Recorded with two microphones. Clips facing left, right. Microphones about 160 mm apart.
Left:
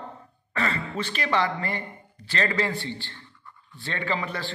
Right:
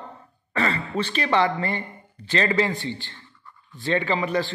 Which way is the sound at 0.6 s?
30° right (ahead or behind).